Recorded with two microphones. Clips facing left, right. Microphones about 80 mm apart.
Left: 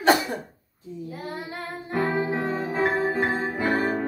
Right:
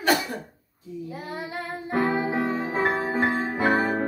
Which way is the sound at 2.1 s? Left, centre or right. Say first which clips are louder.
Right 1 dB; right.